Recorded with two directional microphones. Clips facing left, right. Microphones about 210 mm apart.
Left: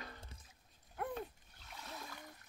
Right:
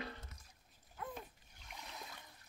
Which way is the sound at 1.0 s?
65° left (ahead or behind).